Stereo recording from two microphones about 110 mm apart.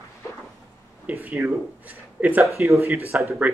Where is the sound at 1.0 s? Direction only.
15° right (ahead or behind).